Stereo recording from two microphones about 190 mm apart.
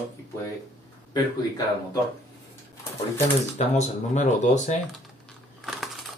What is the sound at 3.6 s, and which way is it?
Speech, 40° left (ahead or behind).